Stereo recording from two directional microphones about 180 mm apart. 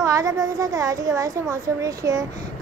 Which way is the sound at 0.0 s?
20° right (ahead or behind).